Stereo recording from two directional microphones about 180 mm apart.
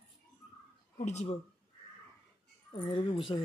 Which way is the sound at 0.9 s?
40° left (ahead or behind).